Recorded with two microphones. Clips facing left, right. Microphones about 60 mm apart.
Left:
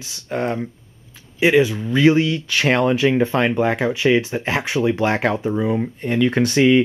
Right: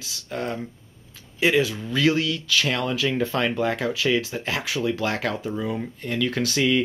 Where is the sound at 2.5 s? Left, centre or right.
Left.